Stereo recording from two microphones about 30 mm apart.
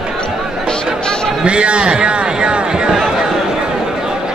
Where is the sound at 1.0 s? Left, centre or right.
Left.